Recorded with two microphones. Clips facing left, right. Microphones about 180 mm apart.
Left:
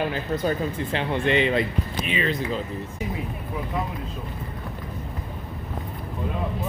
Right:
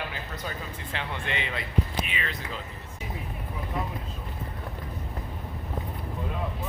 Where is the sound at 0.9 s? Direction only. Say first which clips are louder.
Left 11 dB; 25° left (ahead or behind).